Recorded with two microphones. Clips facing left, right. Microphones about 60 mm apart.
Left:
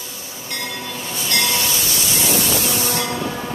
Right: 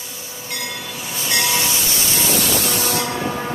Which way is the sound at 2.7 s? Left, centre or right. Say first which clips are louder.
Right 1 dB; right.